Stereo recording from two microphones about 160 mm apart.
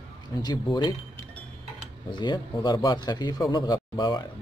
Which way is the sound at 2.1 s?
30° left (ahead or behind).